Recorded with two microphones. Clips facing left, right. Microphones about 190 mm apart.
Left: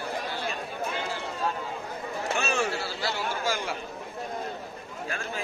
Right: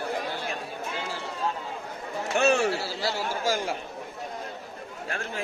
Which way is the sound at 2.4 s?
60° right (ahead or behind).